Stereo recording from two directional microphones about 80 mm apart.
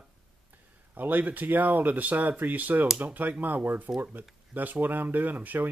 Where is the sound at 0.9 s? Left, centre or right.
Right.